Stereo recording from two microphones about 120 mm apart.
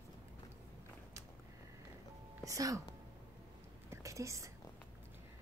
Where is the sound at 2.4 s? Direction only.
30° right (ahead or behind).